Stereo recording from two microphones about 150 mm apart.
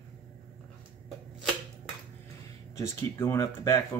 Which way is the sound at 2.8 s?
20° left (ahead or behind).